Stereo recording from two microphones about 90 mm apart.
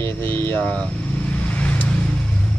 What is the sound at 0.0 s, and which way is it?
Speech, 25° left (ahead or behind).